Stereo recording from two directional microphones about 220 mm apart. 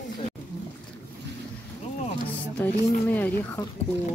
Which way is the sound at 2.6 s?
10° left (ahead or behind).